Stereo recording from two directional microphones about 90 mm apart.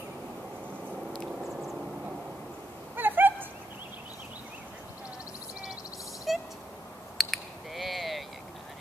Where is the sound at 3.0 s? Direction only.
20° right (ahead or behind).